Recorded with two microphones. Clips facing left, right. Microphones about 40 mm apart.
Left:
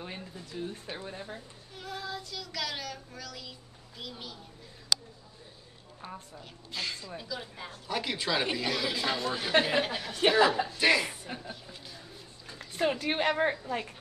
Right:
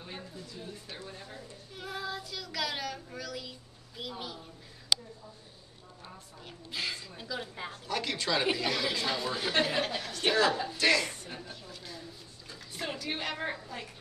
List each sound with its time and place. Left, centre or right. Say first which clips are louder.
0.8 s a woman's voice: left 4 dB; left
1.8 s child singing: right 1 dB; centre
4.0 s speech: right 3 dB; centre
6.7 s speech: even; centre
7.9 s a woman's voice: left 1 dB; centre
12.5 s a woman's voice: left 8 dB; left